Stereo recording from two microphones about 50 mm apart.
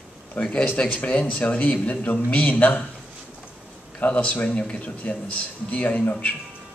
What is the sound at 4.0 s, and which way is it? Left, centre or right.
Speech, left.